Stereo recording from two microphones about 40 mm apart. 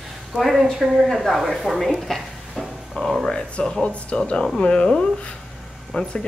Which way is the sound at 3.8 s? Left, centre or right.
Left.